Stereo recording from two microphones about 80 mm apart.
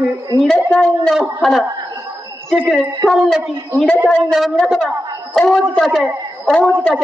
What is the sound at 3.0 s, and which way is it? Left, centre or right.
A man's voice, centre.